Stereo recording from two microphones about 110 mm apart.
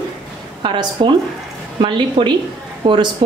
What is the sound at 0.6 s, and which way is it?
A woman's voice, 45° right (ahead or behind).